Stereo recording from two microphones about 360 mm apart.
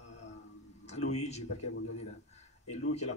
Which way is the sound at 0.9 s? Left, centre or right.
Centre.